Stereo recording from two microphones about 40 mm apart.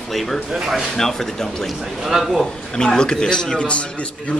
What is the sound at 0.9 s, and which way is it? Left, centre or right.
Speech, centre.